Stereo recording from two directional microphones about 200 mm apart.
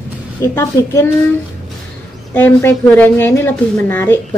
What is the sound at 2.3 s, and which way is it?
Speech, 10° left (ahead or behind).